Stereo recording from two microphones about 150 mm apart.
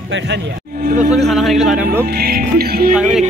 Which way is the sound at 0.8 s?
55° right (ahead or behind).